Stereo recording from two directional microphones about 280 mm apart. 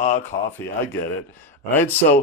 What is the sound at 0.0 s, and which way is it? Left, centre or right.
Speech, left.